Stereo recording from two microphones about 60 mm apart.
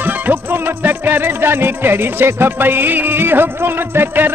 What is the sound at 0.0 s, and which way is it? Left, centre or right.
Music, right.